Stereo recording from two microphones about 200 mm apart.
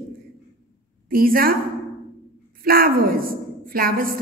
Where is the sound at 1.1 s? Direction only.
45° right (ahead or behind).